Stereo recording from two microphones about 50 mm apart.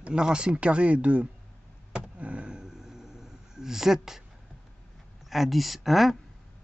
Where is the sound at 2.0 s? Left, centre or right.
Right; by 4.2 s centre.